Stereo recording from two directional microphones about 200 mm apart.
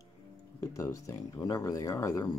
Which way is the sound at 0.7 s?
15° left (ahead or behind).